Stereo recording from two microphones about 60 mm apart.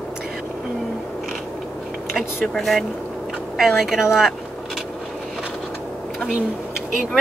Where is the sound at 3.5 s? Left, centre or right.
Centre.